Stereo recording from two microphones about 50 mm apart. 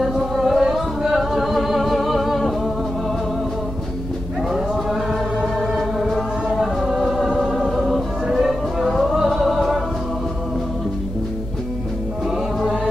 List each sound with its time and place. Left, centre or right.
0.5 s music: centre
5.9 s music: centre